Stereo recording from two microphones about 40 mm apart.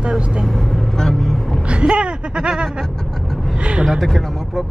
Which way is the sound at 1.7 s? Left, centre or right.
Right.